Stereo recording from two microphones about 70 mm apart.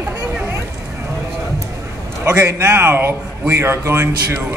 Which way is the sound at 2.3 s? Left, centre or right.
Right.